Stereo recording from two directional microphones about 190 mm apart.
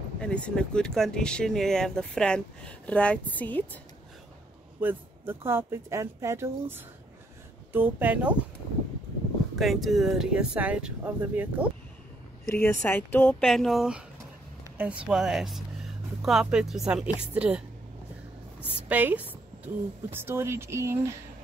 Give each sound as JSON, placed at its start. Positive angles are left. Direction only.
{"t": 0.2, "sound": "speech", "side_deg": 5}
{"t": 4.7, "sound": "a woman's voice", "side_deg": -10}
{"t": 9.6, "sound": "speech", "side_deg": 0}
{"t": 12.8, "sound": "speech", "side_deg": 10}
{"t": 13.4, "sound": "a woman's voice", "side_deg": 0}